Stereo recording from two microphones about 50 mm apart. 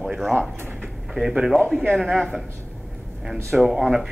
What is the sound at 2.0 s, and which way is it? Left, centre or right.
Speech, centre.